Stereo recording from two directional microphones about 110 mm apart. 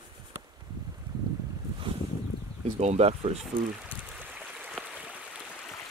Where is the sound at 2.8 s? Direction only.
80° right.